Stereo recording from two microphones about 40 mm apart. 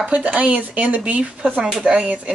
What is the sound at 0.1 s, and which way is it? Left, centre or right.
Speech, right.